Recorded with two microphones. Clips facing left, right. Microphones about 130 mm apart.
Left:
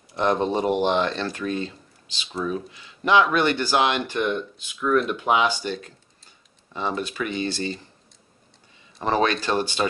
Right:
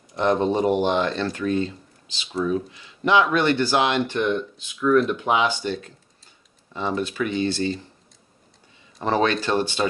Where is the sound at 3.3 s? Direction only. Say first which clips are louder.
Right 1 dB; 15° left (ahead or behind).